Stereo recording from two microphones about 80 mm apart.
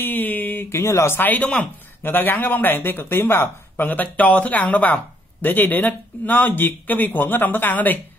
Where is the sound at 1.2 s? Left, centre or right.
Centre.